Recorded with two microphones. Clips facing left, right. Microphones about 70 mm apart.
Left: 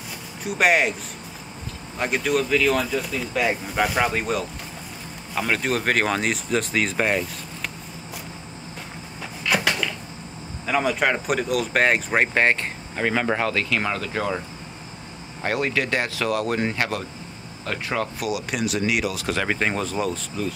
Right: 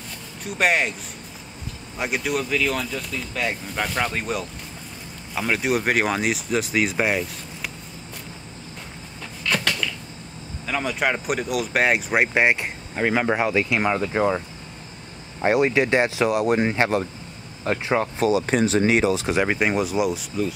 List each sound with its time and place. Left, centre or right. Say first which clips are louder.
0.4 s speech: left 2 dB; centre
2.0 s speech: left 2 dB; centre
9.5 s typewriter: left 2 dB; centre
10.7 s speech: left 2 dB; centre; by 14.3 s right
15.4 s speech: right 5 dB; right